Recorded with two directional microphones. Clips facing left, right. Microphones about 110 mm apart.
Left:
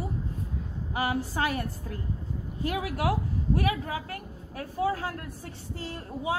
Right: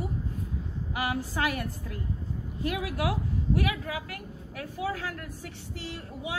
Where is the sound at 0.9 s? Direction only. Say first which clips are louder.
Left 2 dB; 30° left (ahead or behind).